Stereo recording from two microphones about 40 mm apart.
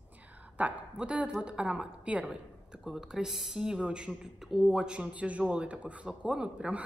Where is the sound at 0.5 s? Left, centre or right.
Right.